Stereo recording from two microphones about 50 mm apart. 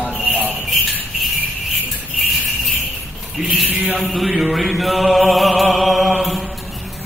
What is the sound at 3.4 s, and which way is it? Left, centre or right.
Speech, centre.